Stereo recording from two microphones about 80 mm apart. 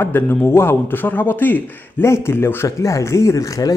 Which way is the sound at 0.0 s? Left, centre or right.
Left.